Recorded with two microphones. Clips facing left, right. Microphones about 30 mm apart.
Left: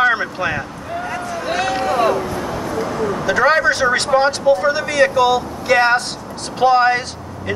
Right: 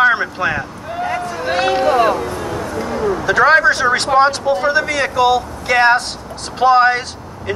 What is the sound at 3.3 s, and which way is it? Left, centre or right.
Speech, centre.